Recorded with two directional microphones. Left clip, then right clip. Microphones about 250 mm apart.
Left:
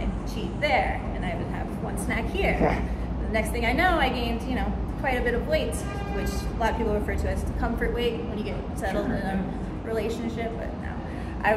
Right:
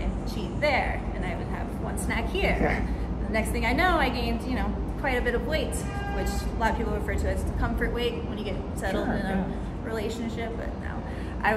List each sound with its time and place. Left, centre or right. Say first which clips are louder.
0.6 s speech: left 1 dB; centre
2.0 s a woman's voice: left 1 dB; centre
11.4 s a woman's voice: left 2 dB; centre